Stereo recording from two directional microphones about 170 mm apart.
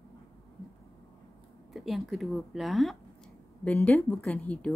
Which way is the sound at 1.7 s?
Centre (ahead or behind).